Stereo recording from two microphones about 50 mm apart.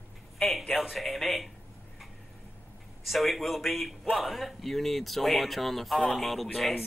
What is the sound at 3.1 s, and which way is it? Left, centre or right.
Speech, centre.